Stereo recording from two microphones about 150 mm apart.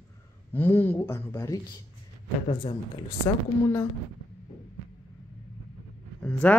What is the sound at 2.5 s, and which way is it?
Speech, 35° left (ahead or behind).